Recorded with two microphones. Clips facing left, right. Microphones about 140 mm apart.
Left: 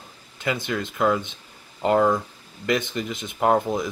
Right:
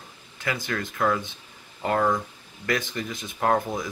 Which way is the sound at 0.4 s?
20° left (ahead or behind).